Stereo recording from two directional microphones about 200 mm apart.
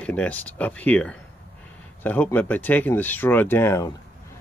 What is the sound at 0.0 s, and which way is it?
Speech, 5° left (ahead or behind).